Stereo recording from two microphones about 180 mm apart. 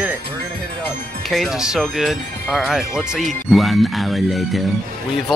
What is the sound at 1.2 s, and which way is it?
Speech, centre (ahead or behind).